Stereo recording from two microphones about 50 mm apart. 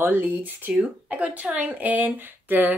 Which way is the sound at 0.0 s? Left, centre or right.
Right.